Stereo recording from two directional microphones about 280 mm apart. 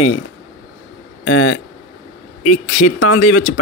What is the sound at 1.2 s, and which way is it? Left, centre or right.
Speech, left.